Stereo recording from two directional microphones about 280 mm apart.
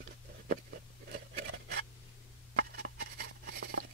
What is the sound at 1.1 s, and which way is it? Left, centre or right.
Scissors, right.